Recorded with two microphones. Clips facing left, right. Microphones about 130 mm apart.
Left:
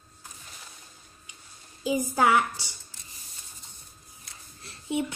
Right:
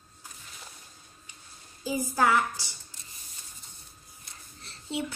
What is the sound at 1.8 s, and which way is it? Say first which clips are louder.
Speech: left 2 dB; 20° left (ahead or behind).